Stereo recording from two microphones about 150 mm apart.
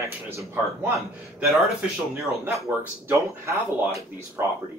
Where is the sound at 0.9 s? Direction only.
Centre (ahead or behind).